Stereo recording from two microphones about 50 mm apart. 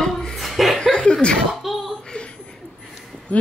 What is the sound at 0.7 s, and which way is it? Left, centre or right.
Speech, centre.